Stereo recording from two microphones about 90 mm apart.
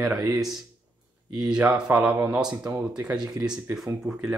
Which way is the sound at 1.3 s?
10° right (ahead or behind).